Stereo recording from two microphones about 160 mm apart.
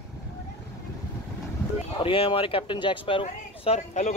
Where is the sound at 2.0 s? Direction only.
35° left (ahead or behind).